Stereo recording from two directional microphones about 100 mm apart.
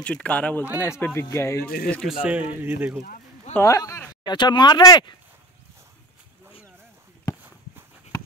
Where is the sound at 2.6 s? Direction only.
20° right (ahead or behind).